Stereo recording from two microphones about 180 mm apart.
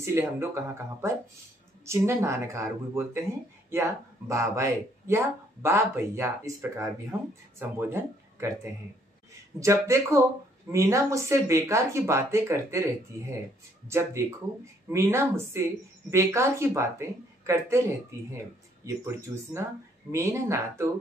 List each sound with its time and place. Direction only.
0.0 s speech: 15° right (ahead or behind)
1.9 s speech: 15° right (ahead or behind)
9.6 s speech: 15° right (ahead or behind)
13.8 s speech: 15° right (ahead or behind)
18.9 s speech: 15° right (ahead or behind)